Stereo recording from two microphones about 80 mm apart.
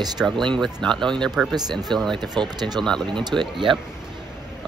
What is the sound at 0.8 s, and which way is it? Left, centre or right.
Speech, centre.